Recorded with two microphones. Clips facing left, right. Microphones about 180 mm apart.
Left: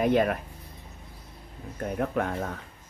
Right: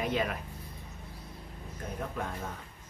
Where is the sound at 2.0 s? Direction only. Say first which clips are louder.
Left 9 dB; 65° left (ahead or behind).